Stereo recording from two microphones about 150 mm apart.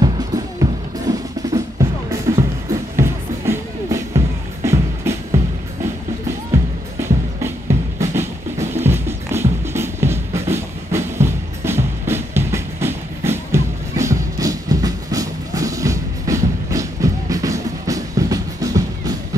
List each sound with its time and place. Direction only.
0.0 s drum: 25° right (ahead or behind)
4.6 s music: 20° right (ahead or behind)
6.5 s music: 15° right (ahead or behind)